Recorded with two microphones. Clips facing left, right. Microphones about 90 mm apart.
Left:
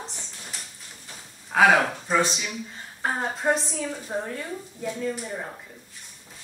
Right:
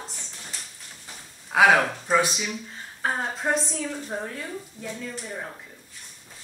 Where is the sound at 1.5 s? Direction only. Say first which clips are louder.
Even; 5° right (ahead or behind).